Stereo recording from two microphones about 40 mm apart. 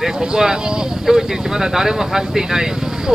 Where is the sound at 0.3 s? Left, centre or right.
Centre.